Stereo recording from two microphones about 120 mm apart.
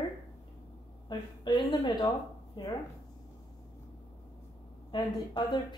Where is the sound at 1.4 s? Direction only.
40° left (ahead or behind).